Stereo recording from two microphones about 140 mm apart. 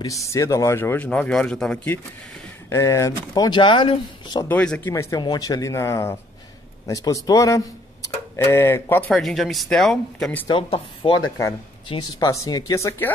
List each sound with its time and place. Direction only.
0.0 s speech: 25° left (ahead or behind); by 2.0 s 5° left (ahead or behind)
2.7 s speech: 20° left (ahead or behind)
4.5 s speech: 10° left (ahead or behind)
5.1 s speech: 30° left (ahead or behind)
9.1 s speech: centre (ahead or behind)
10.4 s speech: 40° left (ahead or behind); by 13.1 s 20° left (ahead or behind)